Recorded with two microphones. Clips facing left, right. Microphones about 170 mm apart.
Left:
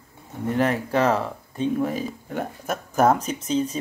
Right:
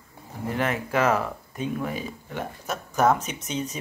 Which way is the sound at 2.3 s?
45° left (ahead or behind).